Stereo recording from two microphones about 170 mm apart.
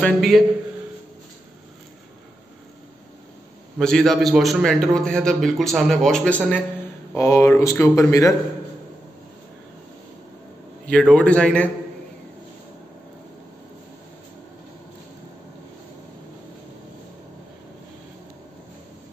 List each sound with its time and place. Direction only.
0.0 s a man's voice: centre (ahead or behind)
3.7 s a man's voice: 5° left (ahead or behind); by 8.4 s 20° left (ahead or behind)
10.9 s speech: 5° left (ahead or behind)